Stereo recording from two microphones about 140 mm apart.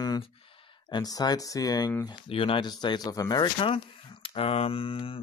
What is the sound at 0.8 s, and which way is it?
Speech, 30° left (ahead or behind).